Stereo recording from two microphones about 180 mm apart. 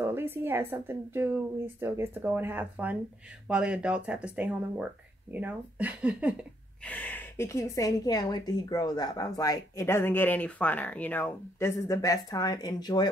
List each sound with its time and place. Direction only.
0.0 s a woman's voice: 10° right (ahead or behind)
6.8 s a woman's voice: 10° left (ahead or behind)